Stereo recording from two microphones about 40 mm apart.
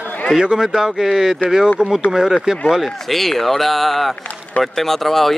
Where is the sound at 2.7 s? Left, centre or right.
Centre.